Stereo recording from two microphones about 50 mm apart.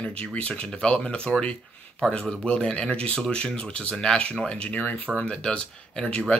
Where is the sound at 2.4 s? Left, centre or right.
Left.